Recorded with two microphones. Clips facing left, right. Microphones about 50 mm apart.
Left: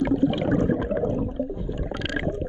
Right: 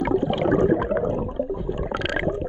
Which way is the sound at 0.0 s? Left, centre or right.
Right.